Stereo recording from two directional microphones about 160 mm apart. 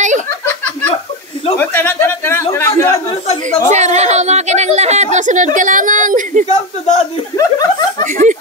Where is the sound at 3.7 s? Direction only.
45° right (ahead or behind).